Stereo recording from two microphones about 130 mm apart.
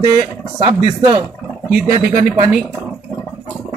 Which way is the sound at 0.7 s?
35° right (ahead or behind).